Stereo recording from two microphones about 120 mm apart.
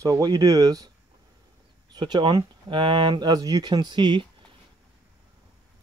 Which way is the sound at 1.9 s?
40° right (ahead or behind).